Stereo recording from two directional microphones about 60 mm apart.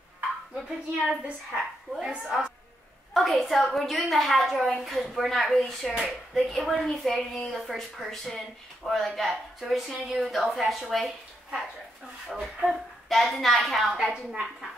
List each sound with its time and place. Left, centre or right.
1.0 s a woman's voice: centre
3.1 s a woman's voice: centre
13.1 s speech: centre
13.9 s a woman's voice: centre